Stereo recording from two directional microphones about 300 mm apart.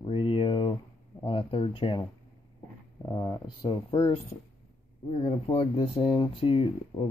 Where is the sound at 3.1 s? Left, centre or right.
Centre.